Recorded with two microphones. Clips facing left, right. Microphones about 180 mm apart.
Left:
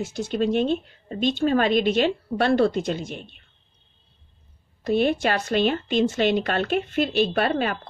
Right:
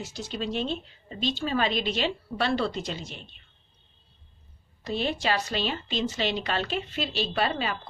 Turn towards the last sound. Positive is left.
turn(degrees=55)  # may be behind; listen again after turning